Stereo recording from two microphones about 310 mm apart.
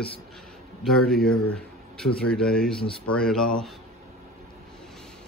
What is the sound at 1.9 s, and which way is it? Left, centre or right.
Speech, centre.